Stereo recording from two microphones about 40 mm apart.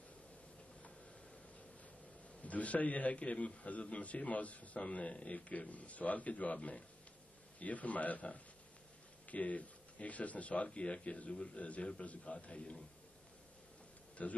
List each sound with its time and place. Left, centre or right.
2.4 s speech: left
4.7 s speech: left
14.2 s speech: left